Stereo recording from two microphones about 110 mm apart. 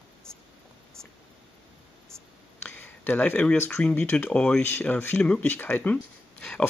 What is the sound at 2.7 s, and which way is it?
Speech, 15° left (ahead or behind).